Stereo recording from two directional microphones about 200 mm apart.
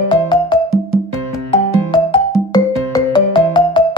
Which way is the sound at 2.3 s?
20° left (ahead or behind).